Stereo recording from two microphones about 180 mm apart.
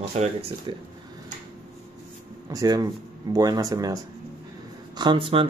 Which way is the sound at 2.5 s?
20° right (ahead or behind).